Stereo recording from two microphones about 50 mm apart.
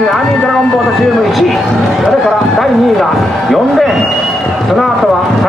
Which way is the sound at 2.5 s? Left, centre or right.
Centre.